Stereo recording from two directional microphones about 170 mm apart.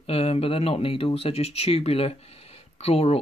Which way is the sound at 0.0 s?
35° left (ahead or behind).